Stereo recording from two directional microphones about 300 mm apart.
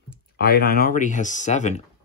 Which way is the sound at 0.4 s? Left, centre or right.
Left.